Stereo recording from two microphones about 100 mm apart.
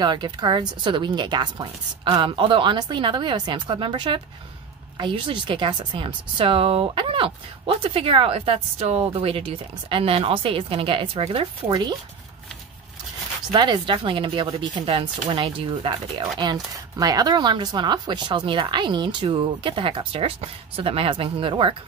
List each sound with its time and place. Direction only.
0.0 s a woman's voice: 45° right (ahead or behind); by 11.2 s 65° right (ahead or behind)
11.3 s speech: 50° right (ahead or behind)
13.5 s speech: 50° right (ahead or behind)